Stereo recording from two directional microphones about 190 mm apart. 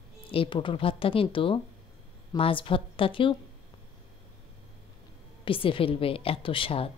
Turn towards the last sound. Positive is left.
turn(degrees=30)  # may be behind; listen again after turning